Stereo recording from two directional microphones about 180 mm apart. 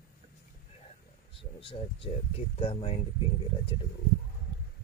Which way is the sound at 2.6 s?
30° left (ahead or behind).